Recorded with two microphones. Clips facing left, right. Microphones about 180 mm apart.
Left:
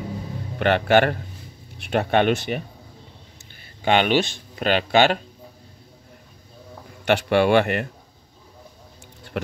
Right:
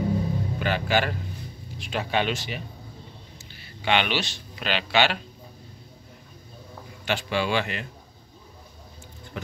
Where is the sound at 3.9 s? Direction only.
45° left (ahead or behind).